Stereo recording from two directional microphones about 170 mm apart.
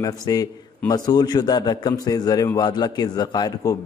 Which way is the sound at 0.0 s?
20° left (ahead or behind).